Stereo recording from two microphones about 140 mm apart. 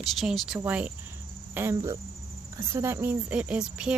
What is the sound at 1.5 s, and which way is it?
Cricket, 15° right (ahead or behind).